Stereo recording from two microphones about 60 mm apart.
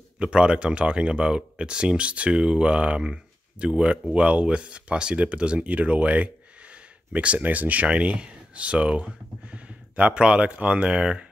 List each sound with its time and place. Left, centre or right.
0.2 s speech: centre